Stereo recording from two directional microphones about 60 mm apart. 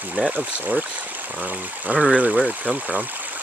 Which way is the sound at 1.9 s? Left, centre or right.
Right.